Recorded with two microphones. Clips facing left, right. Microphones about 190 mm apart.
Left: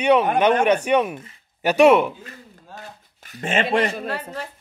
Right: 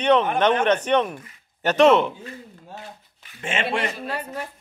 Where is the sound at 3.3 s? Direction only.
40° left (ahead or behind).